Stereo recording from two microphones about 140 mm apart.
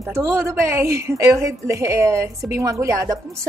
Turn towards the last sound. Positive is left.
turn(degrees=-25)  # may be behind; listen again after turning